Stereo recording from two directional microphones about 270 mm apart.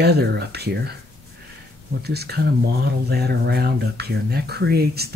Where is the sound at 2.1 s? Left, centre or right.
Right.